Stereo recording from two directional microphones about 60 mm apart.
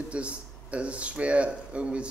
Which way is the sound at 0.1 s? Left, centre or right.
Right.